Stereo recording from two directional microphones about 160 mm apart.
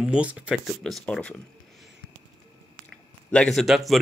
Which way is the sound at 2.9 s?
5° left (ahead or behind).